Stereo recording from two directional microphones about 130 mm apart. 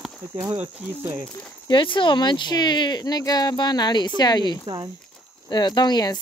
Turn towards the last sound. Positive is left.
turn(degrees=35)  # may be behind; listen again after turning